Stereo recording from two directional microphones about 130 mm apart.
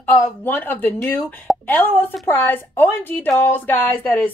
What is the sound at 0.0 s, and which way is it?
A woman's voice, 15° left (ahead or behind).